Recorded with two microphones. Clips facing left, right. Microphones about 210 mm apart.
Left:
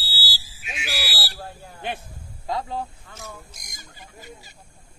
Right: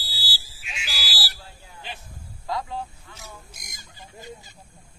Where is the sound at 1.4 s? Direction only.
50° left (ahead or behind).